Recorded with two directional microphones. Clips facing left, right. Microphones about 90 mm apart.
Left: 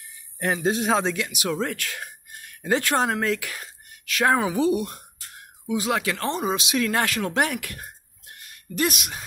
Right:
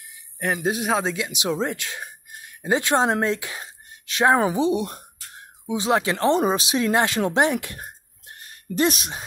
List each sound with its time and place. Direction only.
0.4 s a man's voice: 5° right (ahead or behind)
1.1 s speech: 20° right (ahead or behind)
4.8 s speech: 35° right (ahead or behind)
7.2 s a sound: 25° right (ahead or behind)